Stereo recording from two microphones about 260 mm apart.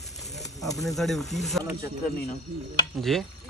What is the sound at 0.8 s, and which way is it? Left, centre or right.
Speech, centre.